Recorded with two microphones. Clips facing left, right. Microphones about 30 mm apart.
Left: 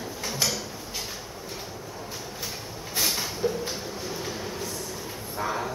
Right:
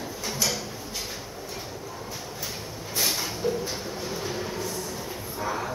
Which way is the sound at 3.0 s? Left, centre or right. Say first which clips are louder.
Left 1 dB; centre.